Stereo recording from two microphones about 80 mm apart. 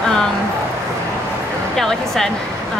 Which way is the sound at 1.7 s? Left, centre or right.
Centre.